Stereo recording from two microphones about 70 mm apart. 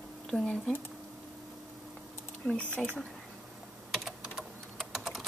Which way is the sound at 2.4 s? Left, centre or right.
Left.